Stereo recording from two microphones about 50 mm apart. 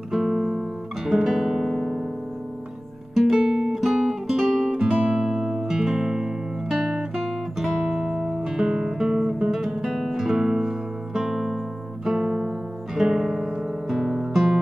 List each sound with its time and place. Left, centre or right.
0.1 s guitar: centre
3.2 s guitar: centre
4.7 s music: right
5.2 s music: centre
7.8 s guitar: centre
9.9 s music: centre
10.2 s music: centre
12.9 s guitar: centre